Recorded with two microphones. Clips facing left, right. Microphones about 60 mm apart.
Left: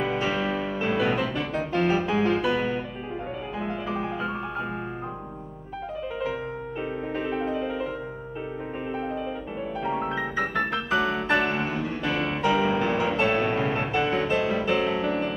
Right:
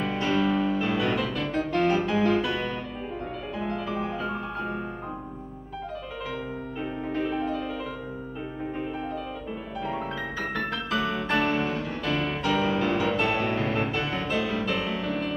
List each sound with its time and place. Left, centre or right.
0.0 s music: centre
3.9 s music: centre
7.2 s music: centre
7.4 s music: centre
9.8 s music: centre